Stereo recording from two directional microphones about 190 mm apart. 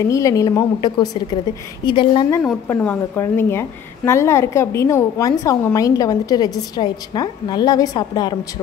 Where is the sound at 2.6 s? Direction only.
10° left (ahead or behind).